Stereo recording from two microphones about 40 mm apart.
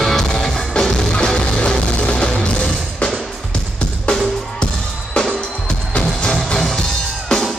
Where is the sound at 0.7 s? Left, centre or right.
Left.